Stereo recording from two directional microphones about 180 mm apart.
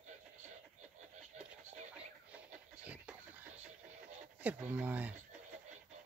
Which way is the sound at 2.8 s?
10° right (ahead or behind).